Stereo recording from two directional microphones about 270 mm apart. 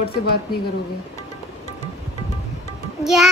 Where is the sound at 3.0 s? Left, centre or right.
Centre.